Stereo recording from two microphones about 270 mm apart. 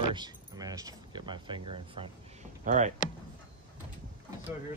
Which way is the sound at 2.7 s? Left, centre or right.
Right.